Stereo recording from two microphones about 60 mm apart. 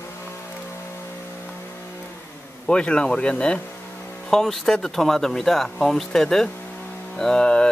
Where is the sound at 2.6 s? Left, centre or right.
Centre.